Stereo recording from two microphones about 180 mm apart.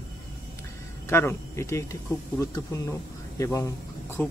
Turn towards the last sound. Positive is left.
turn(degrees=15)  # may be behind; listen again after turning